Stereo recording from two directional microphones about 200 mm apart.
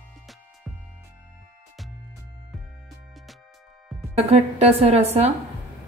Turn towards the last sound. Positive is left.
turn(degrees=-30)  # may be behind; listen again after turning